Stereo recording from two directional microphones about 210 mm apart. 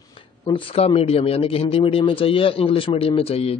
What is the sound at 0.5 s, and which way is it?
A man's voice, 25° left (ahead or behind).